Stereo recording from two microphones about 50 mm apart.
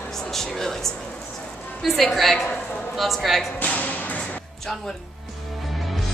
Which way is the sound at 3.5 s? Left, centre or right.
Left.